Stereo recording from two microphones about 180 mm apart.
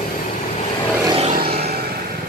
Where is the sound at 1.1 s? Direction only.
35° right (ahead or behind).